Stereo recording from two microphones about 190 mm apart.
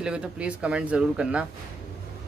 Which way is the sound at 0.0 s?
5° right (ahead or behind).